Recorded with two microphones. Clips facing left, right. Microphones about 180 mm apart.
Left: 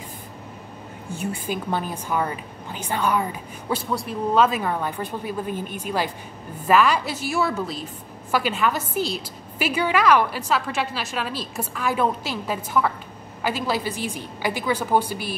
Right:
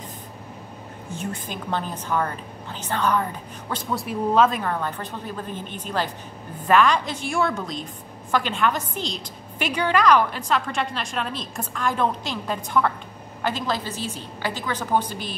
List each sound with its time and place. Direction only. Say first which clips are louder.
1.1 s a woman's voice: left 4 dB; 10° left (ahead or behind)
3.9 s a woman's voice: right 1 dB; centre (ahead or behind)